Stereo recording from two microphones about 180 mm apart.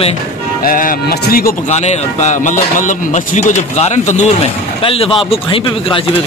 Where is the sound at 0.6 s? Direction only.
50° left (ahead or behind).